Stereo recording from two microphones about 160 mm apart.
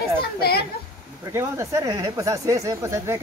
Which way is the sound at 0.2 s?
80° left.